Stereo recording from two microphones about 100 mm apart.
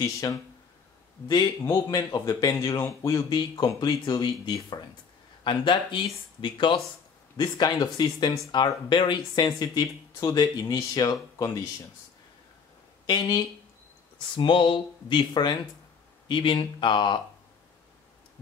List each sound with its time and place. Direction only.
0.0 s speech: 35° left (ahead or behind)
2.5 s speech: 25° left (ahead or behind)
3.3 s speech: 45° left (ahead or behind)
7.3 s speech: 45° left (ahead or behind)
13.0 s speech: 40° left (ahead or behind)
14.3 s speech: 55° left (ahead or behind)